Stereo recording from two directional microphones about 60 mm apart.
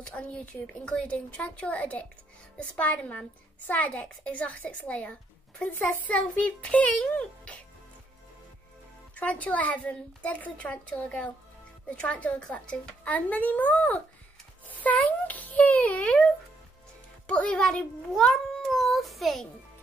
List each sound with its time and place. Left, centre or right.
0.0 s a child's voice: centre
9.1 s a child's voice: left
17.3 s a child's voice: centre